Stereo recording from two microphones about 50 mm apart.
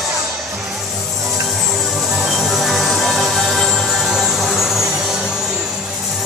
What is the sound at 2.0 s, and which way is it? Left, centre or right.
Music, centre.